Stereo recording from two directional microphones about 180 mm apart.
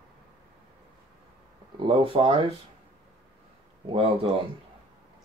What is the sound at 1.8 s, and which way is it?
Speech, 30° right (ahead or behind).